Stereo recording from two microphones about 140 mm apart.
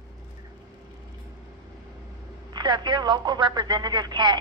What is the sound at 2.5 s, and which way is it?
Speech, 30° right (ahead or behind).